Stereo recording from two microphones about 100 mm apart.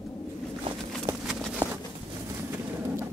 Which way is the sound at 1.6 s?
35° right (ahead or behind).